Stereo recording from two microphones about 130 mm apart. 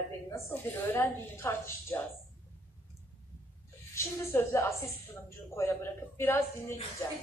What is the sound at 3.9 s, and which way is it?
Speech, 20° left (ahead or behind).